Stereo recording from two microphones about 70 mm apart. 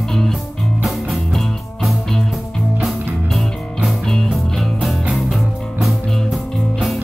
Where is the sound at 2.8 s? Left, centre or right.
Centre.